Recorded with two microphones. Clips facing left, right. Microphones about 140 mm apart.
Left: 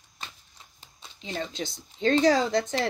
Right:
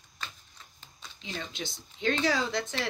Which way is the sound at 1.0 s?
25° left (ahead or behind).